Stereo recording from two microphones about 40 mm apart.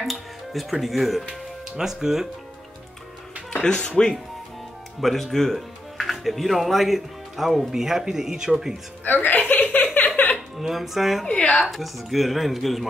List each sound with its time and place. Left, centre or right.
0.0 s speech: centre
1.8 s speech: centre
3.6 s speech: left
5.0 s speech: centre
9.0 s music: left
10.6 s speech: centre
11.2 s speech: left
11.7 s speech: centre